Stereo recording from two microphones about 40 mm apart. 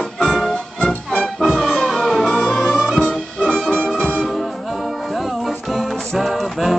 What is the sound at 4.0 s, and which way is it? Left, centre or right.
Music, left.